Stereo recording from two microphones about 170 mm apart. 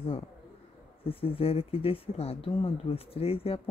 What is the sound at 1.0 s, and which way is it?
Speech, 35° left (ahead or behind).